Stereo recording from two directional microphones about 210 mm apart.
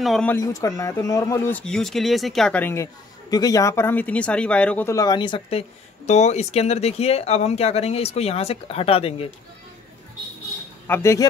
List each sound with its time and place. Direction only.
0.0 s speech: 5° left (ahead or behind)
0.4 s speech: 15° left (ahead or behind)
10.9 s speech: 15° left (ahead or behind)